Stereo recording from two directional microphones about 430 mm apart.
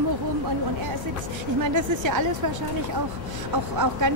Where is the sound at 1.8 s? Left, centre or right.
Right.